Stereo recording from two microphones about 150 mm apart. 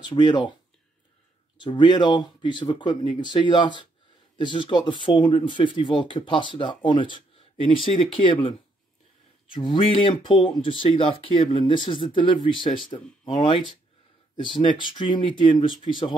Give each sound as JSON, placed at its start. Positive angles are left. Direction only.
{"t": 0.0, "sound": "speech", "side_deg": 30}
{"t": 1.6, "sound": "speech", "side_deg": 30}